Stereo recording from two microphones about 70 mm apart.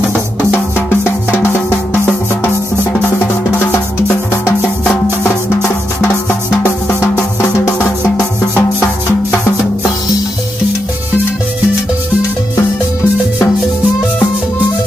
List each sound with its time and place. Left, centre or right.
0.7 s music: left
8.2 s music: left